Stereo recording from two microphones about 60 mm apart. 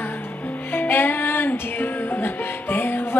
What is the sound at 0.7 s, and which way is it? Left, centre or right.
Music, left.